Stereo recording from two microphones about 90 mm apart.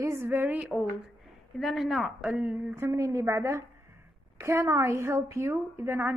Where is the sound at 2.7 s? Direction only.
30° right (ahead or behind).